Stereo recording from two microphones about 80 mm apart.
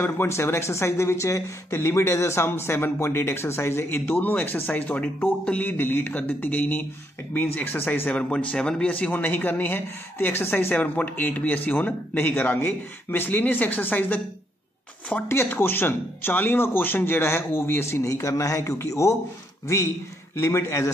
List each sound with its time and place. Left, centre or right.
0.0 s a man's voice: left
15.2 s a man's voice: left
20.3 s a man's voice: left